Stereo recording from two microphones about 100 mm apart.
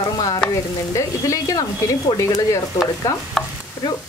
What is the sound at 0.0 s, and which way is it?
Stir, 40° left (ahead or behind).